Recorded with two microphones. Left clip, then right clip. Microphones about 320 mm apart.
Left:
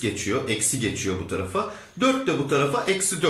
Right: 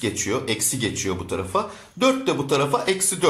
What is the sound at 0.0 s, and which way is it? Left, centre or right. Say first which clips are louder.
A man's voice: right 1 dB; centre.